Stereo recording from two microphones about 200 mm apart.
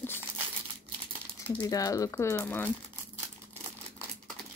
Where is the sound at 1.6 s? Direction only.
15° left (ahead or behind).